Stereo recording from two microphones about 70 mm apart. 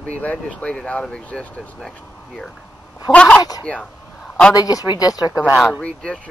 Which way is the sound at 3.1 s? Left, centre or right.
Centre.